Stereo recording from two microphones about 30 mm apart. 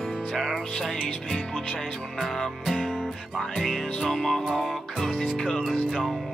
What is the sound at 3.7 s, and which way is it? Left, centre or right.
Music, centre.